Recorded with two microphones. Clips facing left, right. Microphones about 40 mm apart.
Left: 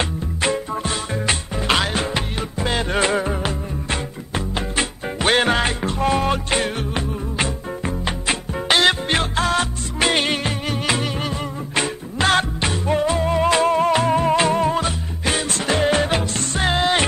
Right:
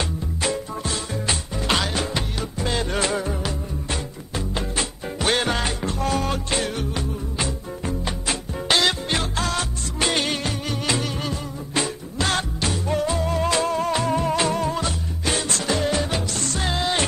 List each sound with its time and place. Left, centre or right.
0.4 s music: left